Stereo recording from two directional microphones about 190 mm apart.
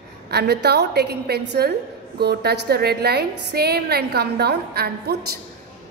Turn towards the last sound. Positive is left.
turn(degrees=-55)  # may be behind; listen again after turning